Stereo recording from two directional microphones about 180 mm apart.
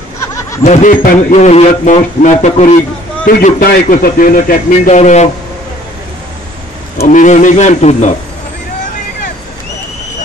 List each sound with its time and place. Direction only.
0.2 s snicker: 15° left (ahead or behind)
0.7 s a man's voice: 45° left (ahead or behind)
3.4 s a man's voice: 50° left (ahead or behind)
7.1 s a man's voice: 45° left (ahead or behind)